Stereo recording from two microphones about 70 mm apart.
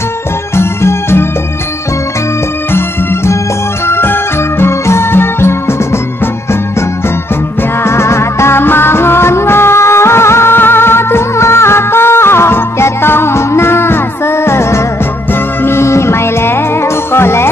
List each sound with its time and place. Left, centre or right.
0.6 s music: left
2.7 s music: left
7.8 s music: left